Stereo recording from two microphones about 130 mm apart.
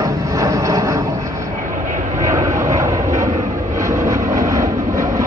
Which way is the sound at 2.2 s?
25° right (ahead or behind).